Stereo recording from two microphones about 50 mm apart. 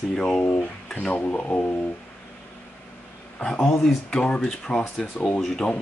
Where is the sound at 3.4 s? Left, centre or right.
Left.